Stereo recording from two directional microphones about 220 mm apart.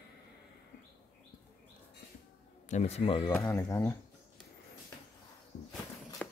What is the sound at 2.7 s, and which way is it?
Speech, 30° left (ahead or behind).